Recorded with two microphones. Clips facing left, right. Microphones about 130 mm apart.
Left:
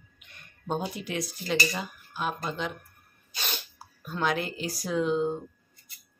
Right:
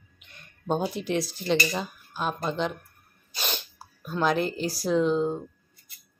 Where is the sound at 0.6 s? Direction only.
30° right (ahead or behind).